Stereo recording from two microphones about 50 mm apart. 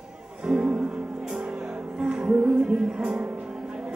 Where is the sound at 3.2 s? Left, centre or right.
Right.